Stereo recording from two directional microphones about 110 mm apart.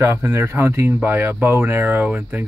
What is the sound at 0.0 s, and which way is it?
Speech, 25° right (ahead or behind).